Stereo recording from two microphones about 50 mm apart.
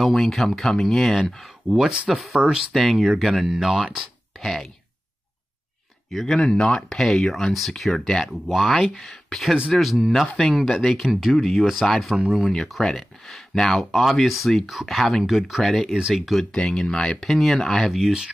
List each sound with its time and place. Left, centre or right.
0.0 s speech: centre
1.7 s speech: centre
2.0 s speech: centre
2.3 s speech: right
2.7 s speech: centre
6.1 s speech: centre
11.0 s speech: centre
12.3 s speech: centre
12.5 s speech: centre
16.5 s speech: centre
17.9 s speech: centre